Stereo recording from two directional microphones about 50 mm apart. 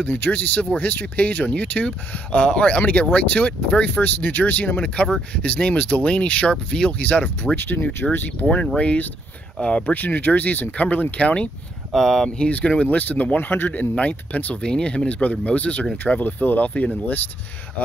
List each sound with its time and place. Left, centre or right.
0.0 s speech: left
4.7 s speech: left
6.9 s speech: left
7.5 s speech: left
8.7 s speech: left
9.9 s speech: left
11.9 s speech: centre
12.4 s speech: left
13.5 s speech: left
13.7 s speech: left
14.6 s speech: centre
16.2 s speech: left